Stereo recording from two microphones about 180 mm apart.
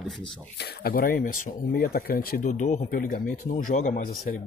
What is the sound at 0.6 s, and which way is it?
Speech, 60° left (ahead or behind).